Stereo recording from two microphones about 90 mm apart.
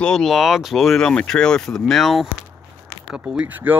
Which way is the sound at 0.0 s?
5° left (ahead or behind).